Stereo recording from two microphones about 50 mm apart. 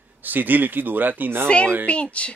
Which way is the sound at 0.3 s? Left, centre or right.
Right.